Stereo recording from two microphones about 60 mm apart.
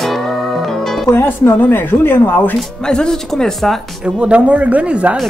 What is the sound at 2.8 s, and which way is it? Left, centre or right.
Speech, centre.